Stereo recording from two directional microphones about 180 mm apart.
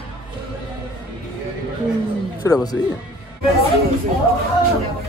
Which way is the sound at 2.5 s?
20° left (ahead or behind).